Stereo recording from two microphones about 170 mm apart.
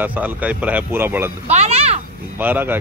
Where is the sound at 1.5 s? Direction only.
40° right (ahead or behind).